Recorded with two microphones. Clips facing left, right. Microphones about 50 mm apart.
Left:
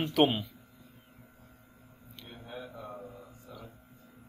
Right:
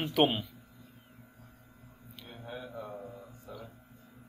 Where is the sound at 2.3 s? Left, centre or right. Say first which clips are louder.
Right 1 dB; centre.